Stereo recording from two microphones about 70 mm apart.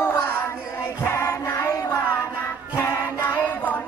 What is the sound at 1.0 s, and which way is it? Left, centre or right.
Music, left.